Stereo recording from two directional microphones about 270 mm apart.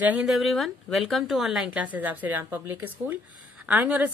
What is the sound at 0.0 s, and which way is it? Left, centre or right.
Speech, centre.